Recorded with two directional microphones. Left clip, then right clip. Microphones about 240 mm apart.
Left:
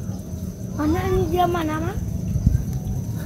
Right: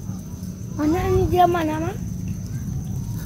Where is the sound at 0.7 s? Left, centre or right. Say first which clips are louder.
Right 1 dB; right.